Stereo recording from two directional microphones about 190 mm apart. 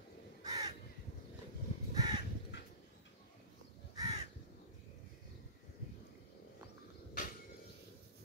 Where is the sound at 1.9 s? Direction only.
20° right (ahead or behind).